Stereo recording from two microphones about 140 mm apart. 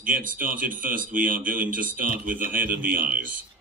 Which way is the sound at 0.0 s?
75° right (ahead or behind).